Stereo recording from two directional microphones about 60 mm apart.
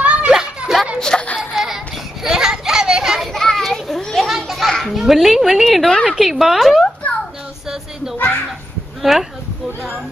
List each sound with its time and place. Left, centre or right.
0.0 s children playing: right
0.3 s children playing: centre
0.9 s music: centre
1.5 s music: centre
2.2 s children playing: centre
3.3 s children playing: centre
6.0 s speech: centre
9.1 s speech: centre